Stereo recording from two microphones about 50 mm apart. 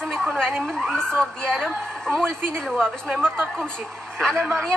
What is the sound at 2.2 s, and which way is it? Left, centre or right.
Speech, right.